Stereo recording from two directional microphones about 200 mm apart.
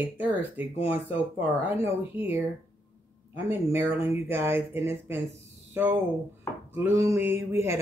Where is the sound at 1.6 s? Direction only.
10° right (ahead or behind).